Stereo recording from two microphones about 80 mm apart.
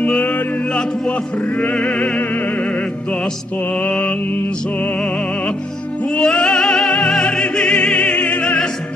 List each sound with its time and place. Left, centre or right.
0.0 s music: centre
3.7 s mantra: centre
4.7 s music: centre